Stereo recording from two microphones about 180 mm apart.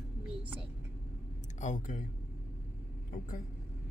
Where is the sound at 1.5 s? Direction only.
45° left (ahead or behind).